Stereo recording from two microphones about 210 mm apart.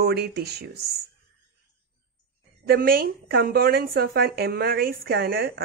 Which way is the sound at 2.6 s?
45° right (ahead or behind).